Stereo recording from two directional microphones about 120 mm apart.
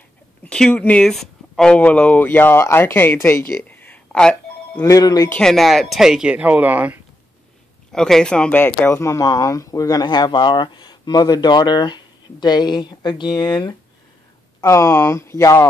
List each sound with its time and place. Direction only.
0.4 s speech: 10° left (ahead or behind)
4.8 s speech: 30° left (ahead or behind)
5.3 s speech: 5° left (ahead or behind); by 7.0 s 15° right (ahead or behind)
7.9 s speech: 5° left (ahead or behind); by 13.7 s 35° left (ahead or behind)
14.6 s speech: 25° left (ahead or behind)